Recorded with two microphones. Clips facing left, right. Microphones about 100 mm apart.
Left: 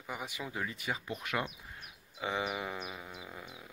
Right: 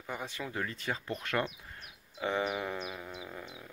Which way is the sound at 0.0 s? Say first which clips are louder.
Right 2 dB; 10° left (ahead or behind).